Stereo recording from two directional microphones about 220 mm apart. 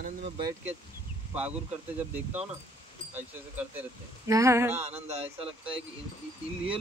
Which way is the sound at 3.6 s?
10° right (ahead or behind).